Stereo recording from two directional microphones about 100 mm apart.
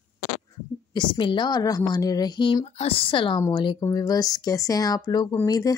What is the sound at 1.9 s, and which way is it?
Speech, 40° left (ahead or behind).